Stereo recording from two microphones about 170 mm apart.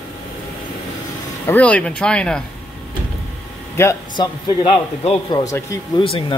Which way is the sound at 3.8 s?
15° left (ahead or behind).